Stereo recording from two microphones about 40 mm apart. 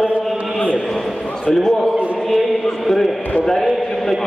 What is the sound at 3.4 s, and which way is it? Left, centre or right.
Speech, centre.